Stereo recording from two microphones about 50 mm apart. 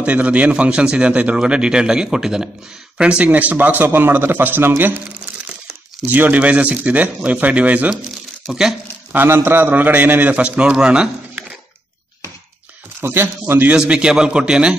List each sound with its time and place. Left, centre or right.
0.0 s a man's voice: right
6.0 s speech: right
9.1 s a man's voice: right
9.8 s speech: right
10.3 s a man's voice: right
13.0 s a man's voice: right
13.7 s a man's voice: centre